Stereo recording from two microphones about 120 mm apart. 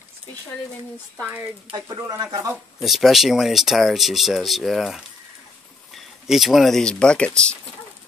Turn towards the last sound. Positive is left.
turn(degrees=10)  # may be behind; listen again after turning